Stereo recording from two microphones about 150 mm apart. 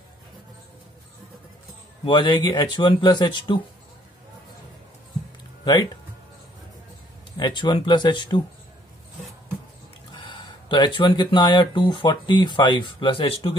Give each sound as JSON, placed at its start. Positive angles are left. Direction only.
{"t": 2.0, "sound": "speech", "side_deg": 30}
{"t": 7.3, "sound": "speech", "side_deg": 30}
{"t": 10.1, "sound": "speech", "side_deg": 30}